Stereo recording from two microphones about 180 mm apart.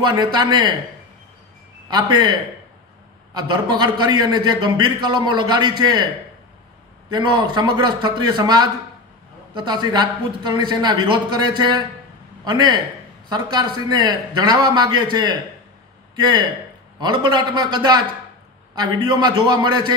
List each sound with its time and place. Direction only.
0.1 s a man's voice: 25° right (ahead or behind)
1.9 s a man's voice: 25° right (ahead or behind)
3.3 s a man's voice: 25° right (ahead or behind)
7.1 s a man's voice: 25° right (ahead or behind)